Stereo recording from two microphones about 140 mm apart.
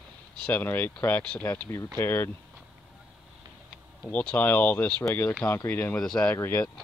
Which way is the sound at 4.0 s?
10° left (ahead or behind).